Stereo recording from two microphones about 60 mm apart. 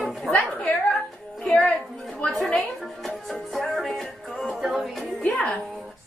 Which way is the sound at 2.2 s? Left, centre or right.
Centre.